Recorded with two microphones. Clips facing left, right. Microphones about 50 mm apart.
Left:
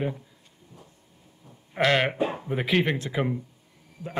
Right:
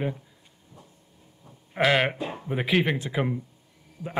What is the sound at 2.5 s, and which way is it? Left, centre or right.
Speech, centre.